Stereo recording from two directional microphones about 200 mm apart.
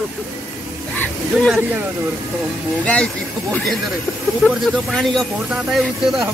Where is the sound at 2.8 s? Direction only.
5° left (ahead or behind).